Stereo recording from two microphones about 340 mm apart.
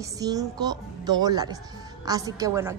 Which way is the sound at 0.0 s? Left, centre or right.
Centre.